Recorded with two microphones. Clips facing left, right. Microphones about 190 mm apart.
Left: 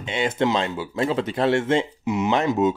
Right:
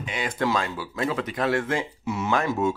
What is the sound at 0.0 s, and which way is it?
Speech, 25° left (ahead or behind).